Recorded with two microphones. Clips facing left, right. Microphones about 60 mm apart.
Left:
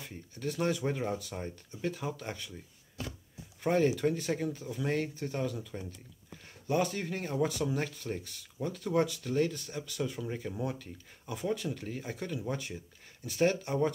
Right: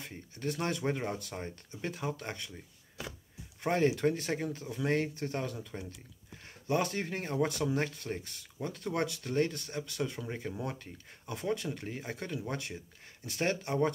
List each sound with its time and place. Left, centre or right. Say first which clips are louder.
0.4 s speech: left 2 dB; centre
3.6 s speech: left 1 dB; centre
7.4 s speech: right 1 dB; centre
11.7 s speech: left 1 dB; centre
12.1 s speech: left 1 dB; centre